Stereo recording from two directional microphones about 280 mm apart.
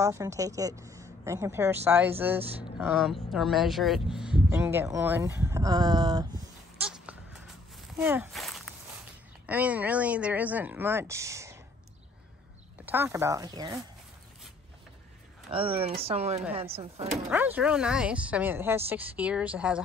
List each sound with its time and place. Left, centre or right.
0.0 s speech: centre
6.8 s goat: centre
7.7 s walk: centre
9.5 s speech: centre
12.8 s speech: centre
15.5 s speech: centre
17.1 s speech: centre